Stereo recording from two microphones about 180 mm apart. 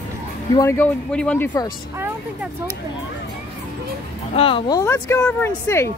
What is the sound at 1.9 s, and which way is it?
Speech, 10° right (ahead or behind).